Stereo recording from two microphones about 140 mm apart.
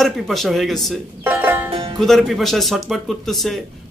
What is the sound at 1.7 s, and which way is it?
Music, 35° right (ahead or behind).